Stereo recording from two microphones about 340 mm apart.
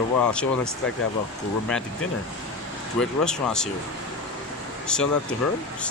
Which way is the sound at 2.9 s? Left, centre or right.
Centre.